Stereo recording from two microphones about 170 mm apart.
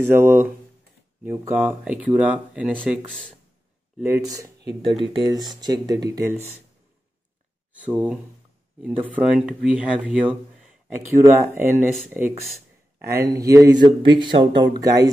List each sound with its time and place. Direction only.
0.0 s speech: 15° right (ahead or behind)
3.1 s speech: 5° left (ahead or behind)
4.0 s speech: 15° right (ahead or behind)
7.8 s speech: 5° right (ahead or behind)
11.2 s speech: 15° right (ahead or behind)